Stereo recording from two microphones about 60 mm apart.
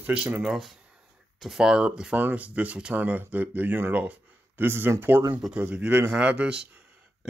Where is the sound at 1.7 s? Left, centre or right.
Centre.